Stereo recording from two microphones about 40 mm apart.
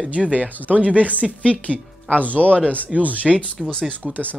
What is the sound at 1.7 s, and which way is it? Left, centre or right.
Speech, right.